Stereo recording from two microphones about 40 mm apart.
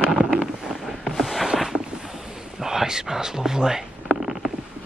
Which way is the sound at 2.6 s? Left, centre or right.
Centre.